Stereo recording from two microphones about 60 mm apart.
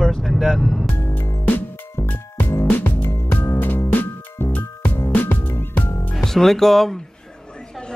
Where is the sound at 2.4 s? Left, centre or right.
Left.